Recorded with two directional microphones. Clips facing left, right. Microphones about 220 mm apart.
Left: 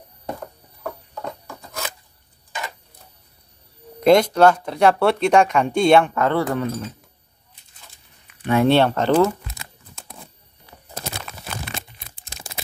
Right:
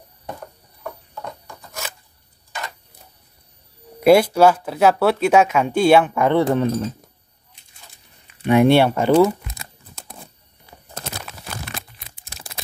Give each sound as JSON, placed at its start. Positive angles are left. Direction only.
{"t": 4.0, "sound": "speech", "side_deg": -10}
{"t": 6.4, "sound": "speech", "side_deg": -25}
{"t": 8.3, "sound": "speech", "side_deg": -20}
{"t": 9.6, "sound": "tearing", "side_deg": -35}
{"t": 11.0, "sound": "crumpling", "side_deg": 0}